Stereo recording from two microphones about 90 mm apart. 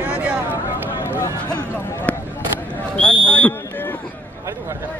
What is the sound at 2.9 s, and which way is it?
Speech, 15° left (ahead or behind).